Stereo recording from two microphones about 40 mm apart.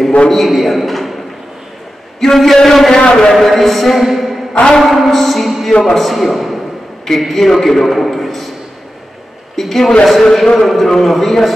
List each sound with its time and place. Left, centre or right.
0.3 s a man's voice: centre
5.7 s a man's voice: centre
5.9 s a man's voice: centre
9.6 s a man's voice: centre